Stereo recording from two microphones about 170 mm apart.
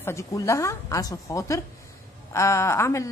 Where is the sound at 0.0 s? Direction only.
20° left (ahead or behind).